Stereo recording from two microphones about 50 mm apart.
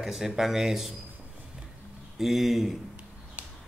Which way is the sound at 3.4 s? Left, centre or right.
Right.